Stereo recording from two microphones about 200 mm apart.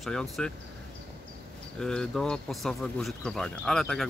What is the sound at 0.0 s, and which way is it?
Speech, centre (ahead or behind).